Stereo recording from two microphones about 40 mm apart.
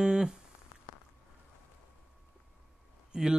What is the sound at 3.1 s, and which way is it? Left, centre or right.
Speech, centre.